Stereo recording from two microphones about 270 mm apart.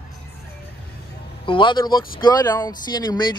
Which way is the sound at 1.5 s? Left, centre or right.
Centre.